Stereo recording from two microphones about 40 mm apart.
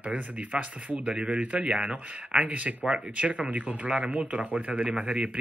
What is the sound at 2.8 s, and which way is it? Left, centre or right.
Speech, right.